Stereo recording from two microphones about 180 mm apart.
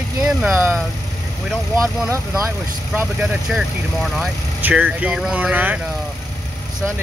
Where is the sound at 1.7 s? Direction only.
15° right (ahead or behind).